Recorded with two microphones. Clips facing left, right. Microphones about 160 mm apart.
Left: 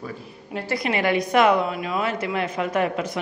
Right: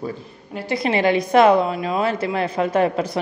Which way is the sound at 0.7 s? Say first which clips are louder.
Right 4 dB; 30° right (ahead or behind).